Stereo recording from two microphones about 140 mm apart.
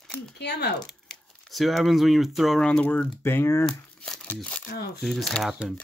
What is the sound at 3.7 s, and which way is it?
Crumpling, 5° left (ahead or behind).